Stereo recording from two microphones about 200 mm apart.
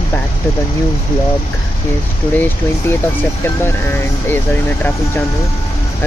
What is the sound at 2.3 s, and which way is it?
Speech, 10° left (ahead or behind).